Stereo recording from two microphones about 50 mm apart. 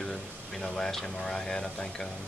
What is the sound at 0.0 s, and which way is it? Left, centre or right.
Speech, centre.